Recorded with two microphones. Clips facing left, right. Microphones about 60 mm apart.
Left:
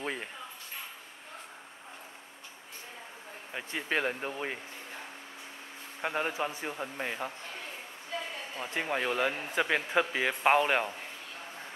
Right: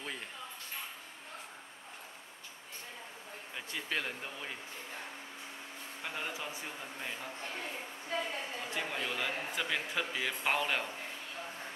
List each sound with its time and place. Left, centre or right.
0.0 s a sound: left
3.5 s speech: left
6.0 s a man's voice: left
8.7 s speech: left